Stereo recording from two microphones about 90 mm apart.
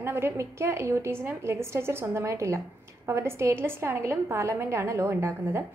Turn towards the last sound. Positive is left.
turn(degrees=-30)  # may be behind; listen again after turning